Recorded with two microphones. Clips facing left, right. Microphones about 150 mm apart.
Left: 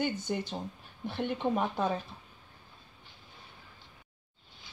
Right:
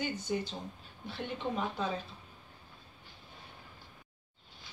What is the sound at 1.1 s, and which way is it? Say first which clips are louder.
Speech: left 6 dB; 55° left (ahead or behind).